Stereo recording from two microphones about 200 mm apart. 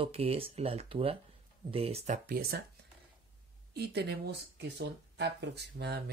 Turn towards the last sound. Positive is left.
turn(degrees=-55)  # may be behind; listen again after turning